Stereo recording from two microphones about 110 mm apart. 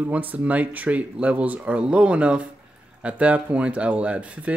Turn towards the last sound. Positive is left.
turn(degrees=-10)  # may be behind; listen again after turning